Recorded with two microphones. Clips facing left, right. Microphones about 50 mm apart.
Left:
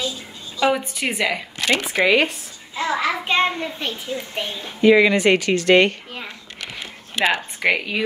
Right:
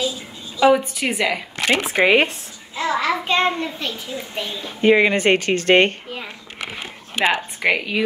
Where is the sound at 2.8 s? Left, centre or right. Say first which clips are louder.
Right 1 dB; centre.